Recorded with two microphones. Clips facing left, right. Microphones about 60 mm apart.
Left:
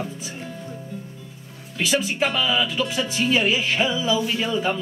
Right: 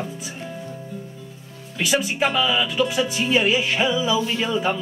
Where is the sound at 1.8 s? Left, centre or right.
Centre.